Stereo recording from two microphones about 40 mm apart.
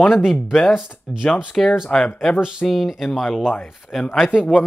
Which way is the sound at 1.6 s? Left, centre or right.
Centre.